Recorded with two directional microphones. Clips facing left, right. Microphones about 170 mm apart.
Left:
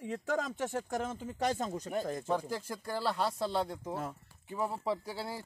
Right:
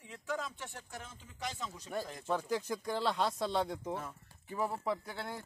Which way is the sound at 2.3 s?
10° left (ahead or behind).